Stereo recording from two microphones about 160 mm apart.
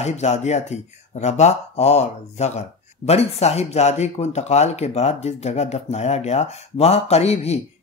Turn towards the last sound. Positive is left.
turn(degrees=40)  # may be behind; listen again after turning